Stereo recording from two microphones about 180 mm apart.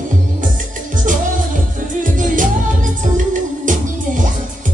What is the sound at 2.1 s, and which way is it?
Music, 45° right (ahead or behind).